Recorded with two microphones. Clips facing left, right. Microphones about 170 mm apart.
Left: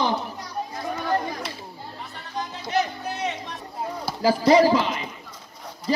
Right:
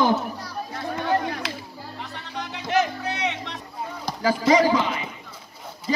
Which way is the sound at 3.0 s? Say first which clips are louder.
Right 1 dB; 70° right (ahead or behind).